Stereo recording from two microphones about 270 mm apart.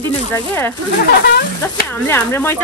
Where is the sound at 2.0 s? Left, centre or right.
Centre.